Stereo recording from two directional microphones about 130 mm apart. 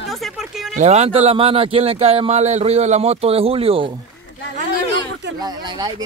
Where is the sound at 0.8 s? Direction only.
55° right (ahead or behind).